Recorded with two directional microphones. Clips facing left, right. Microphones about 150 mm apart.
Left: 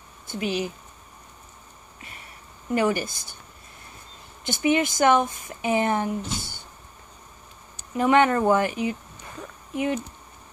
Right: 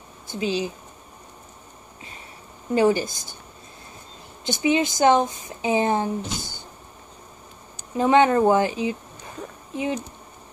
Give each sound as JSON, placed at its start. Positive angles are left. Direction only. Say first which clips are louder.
{"t": 0.4, "sound": "speech", "louder": "right 2 dB", "side_deg": -25}
{"t": 2.7, "sound": "speech", "louder": "right 4 dB", "side_deg": -25}
{"t": 4.5, "sound": "speech", "louder": "right 1 dB", "side_deg": -20}
{"t": 8.0, "sound": "speech", "louder": "right 2 dB", "side_deg": -20}